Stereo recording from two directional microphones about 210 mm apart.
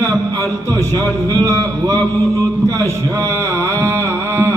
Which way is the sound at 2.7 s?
15° right (ahead or behind).